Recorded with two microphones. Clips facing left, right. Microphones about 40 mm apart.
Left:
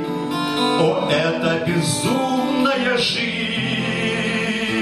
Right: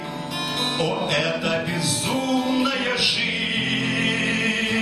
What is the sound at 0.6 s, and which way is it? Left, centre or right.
Music, left.